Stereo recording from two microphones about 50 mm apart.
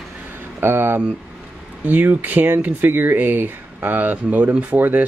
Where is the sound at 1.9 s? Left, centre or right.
Right.